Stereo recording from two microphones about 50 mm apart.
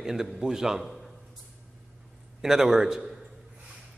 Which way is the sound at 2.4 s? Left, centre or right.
Centre.